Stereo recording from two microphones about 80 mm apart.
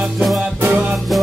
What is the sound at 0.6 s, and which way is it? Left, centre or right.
Music, right.